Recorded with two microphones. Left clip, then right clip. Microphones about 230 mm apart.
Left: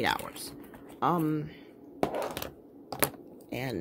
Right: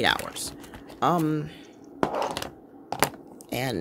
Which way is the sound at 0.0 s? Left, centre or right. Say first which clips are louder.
Right 6 dB; centre.